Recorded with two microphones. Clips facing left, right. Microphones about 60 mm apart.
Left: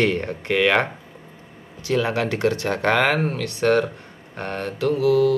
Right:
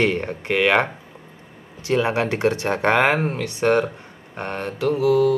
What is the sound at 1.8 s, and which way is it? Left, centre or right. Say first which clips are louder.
Speech: right 1 dB; right.